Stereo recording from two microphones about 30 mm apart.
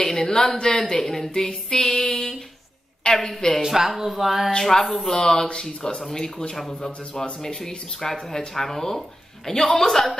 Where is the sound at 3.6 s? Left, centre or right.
Centre.